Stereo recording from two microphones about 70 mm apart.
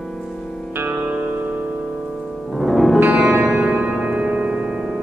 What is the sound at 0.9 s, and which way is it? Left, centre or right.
Music, right.